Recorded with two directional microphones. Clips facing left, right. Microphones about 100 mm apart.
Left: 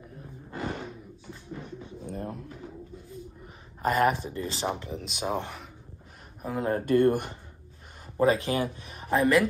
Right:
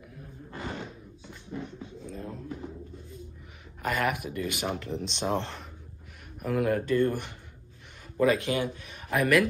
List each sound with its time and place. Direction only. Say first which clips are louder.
2.0 s a sound: left 4 dB; 60° left (ahead or behind)
3.8 s speech: left 5 dB; 35° left (ahead or behind)
4.9 s speech: right 1 dB; 5° left (ahead or behind)
6.4 s speech: right 2 dB; 25° left (ahead or behind)
6.9 s speech: left 4 dB; 50° left (ahead or behind)
8.2 s a man's voice: left 1 dB; 35° left (ahead or behind)